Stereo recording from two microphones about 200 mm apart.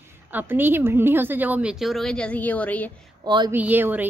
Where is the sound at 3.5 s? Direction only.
10° right (ahead or behind).